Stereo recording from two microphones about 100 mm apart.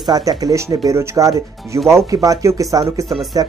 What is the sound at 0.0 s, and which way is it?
Speech, 40° right (ahead or behind).